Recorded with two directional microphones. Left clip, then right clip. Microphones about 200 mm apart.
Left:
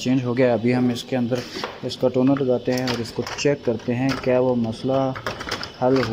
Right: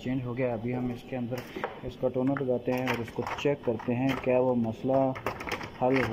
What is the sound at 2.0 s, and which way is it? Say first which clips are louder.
Speech: left 9 dB; 15° left (ahead or behind).